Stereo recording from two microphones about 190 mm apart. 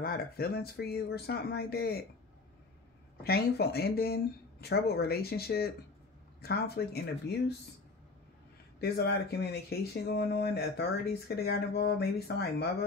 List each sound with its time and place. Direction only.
0.0 s speech: 50° left (ahead or behind)
3.3 s speech: 55° left (ahead or behind)
8.8 s speech: 55° left (ahead or behind)